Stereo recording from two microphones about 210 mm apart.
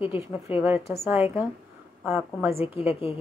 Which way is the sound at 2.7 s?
25° left (ahead or behind).